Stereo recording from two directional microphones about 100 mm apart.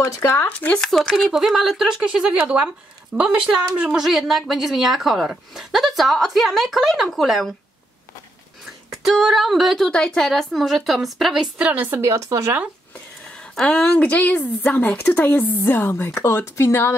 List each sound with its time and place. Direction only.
0.0 s speech: 30° left (ahead or behind)
0.5 s a woman's voice: 15° left (ahead or behind); by 7.5 s centre (ahead or behind)
8.9 s speech: 5° right (ahead or behind)
11.5 s a woman's voice: 15° right (ahead or behind)
12.0 s speech: 30° right (ahead or behind)
13.6 s a woman's voice: 10° left (ahead or behind); by 16.9 s 25° left (ahead or behind)